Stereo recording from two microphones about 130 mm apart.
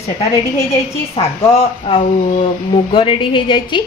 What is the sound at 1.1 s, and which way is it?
A woman's voice, 50° left (ahead or behind).